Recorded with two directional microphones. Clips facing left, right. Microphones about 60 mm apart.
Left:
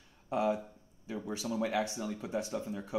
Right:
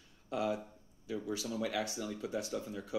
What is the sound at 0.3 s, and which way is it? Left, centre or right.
Speech, left.